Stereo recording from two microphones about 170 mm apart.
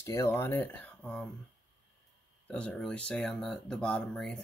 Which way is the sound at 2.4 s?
5° left (ahead or behind).